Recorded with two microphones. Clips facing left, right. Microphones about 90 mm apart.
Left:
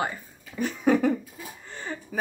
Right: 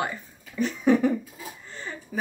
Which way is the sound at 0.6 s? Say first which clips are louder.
Right 1 dB; 50° left (ahead or behind).